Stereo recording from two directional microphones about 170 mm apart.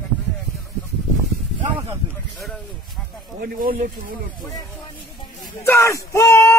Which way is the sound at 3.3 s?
60° right (ahead or behind).